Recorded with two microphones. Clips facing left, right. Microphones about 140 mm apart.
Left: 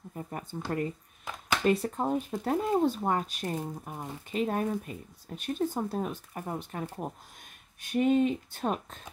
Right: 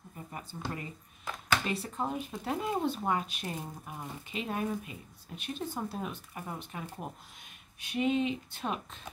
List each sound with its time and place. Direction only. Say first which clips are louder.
0.1 s speech: left 6 dB; 55° left (ahead or behind)